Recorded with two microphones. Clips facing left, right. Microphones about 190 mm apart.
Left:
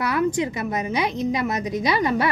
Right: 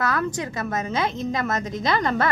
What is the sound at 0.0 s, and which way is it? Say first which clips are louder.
A woman's voice: left 4 dB; 15° left (ahead or behind).